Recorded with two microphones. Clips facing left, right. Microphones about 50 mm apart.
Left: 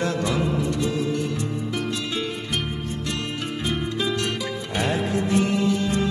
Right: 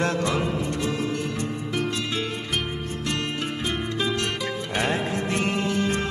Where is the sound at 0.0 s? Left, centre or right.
Right.